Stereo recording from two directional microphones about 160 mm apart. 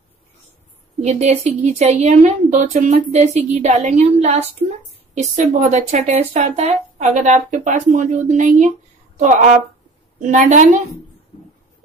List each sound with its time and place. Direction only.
1.0 s speech: 40° right (ahead or behind)